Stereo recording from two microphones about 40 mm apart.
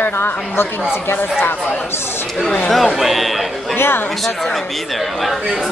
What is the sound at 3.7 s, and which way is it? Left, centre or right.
Speech, left.